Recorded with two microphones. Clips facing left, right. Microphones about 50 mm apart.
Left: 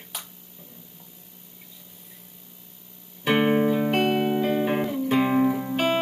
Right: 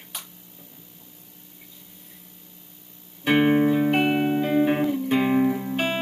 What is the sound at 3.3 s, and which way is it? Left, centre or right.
Music, centre.